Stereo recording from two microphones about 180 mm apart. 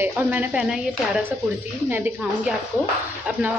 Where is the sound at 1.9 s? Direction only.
10° right (ahead or behind).